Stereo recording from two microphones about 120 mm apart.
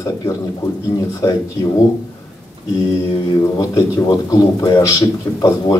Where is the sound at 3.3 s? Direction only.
30° left (ahead or behind).